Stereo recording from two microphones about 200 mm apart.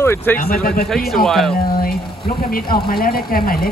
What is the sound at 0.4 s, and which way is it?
Speech, 45° left (ahead or behind).